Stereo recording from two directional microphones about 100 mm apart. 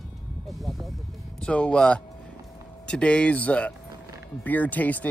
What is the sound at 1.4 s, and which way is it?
Speech, 10° left (ahead or behind).